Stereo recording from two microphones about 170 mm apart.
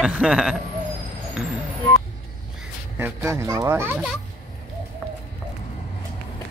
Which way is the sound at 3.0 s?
15° right (ahead or behind).